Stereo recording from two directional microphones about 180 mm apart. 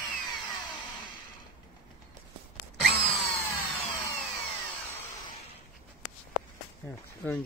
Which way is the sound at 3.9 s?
25° left (ahead or behind).